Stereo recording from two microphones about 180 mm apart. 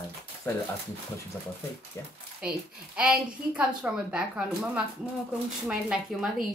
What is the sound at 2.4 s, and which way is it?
A woman's voice, 5° right (ahead or behind).